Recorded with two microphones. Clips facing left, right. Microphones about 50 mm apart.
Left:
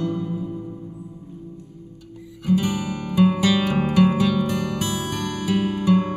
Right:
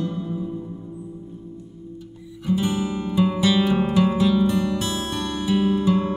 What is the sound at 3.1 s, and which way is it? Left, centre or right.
Music, left.